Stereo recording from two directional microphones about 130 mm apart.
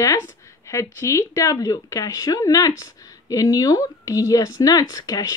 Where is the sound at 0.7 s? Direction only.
25° left (ahead or behind).